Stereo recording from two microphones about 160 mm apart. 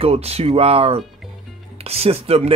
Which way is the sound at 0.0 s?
40° right (ahead or behind).